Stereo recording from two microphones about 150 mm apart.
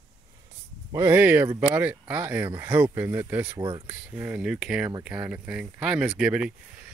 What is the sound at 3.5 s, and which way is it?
Speech, 30° right (ahead or behind).